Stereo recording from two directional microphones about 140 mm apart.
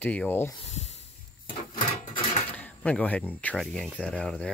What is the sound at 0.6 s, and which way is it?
Speech, 55° left (ahead or behind).